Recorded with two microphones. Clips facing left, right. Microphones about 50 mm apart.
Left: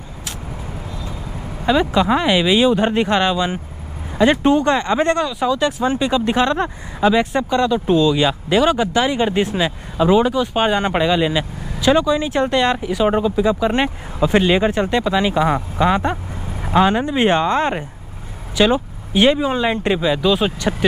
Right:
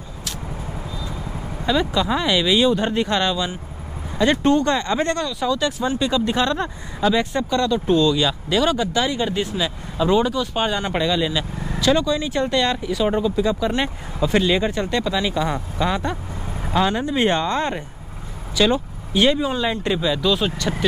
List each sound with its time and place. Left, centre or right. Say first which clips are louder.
1.7 s speech: left 5 dB; left
10.0 s speech: left 4 dB; centre